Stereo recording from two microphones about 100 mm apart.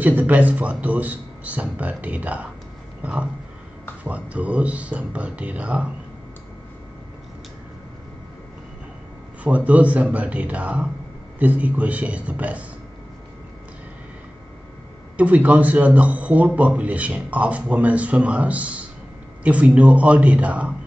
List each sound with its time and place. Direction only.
0.0 s speech: 15° right (ahead or behind)
3.0 s a sound: 15° right (ahead or behind)
4.0 s speech: 15° right (ahead or behind)
9.4 s speech: 15° right (ahead or behind)
15.1 s speech: 15° right (ahead or behind)